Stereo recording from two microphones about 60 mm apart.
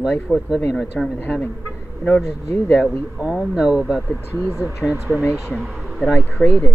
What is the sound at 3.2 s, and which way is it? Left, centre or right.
Speech, centre.